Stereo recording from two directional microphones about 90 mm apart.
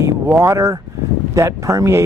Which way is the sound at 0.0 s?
35° right (ahead or behind).